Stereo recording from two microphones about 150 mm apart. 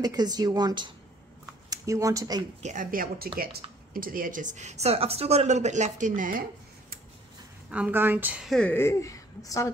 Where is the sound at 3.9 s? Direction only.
70° right (ahead or behind).